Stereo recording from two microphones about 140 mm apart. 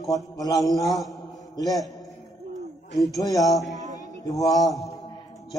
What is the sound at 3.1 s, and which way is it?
Mantra, 25° left (ahead or behind).